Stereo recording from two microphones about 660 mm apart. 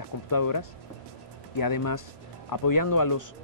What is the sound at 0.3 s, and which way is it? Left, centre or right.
Speech, left.